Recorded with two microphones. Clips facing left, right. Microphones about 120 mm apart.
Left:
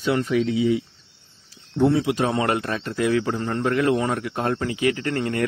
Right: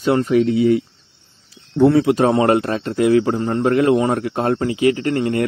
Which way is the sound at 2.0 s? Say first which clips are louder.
Right 7 dB; 45° right (ahead or behind).